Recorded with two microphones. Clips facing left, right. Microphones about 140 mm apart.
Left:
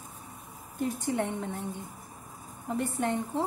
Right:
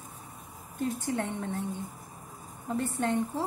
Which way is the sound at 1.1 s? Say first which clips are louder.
Left 1 dB; 15° left (ahead or behind).